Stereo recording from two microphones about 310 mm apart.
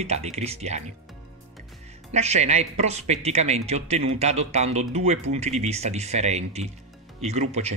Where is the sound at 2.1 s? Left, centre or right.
Right.